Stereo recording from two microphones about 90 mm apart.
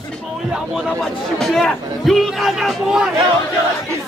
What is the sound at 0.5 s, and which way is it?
Speech, centre (ahead or behind).